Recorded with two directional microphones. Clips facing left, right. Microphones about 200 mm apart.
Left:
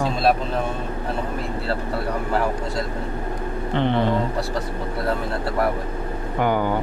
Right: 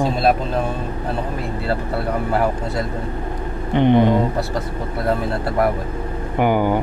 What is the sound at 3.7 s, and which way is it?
Speech, 15° right (ahead or behind).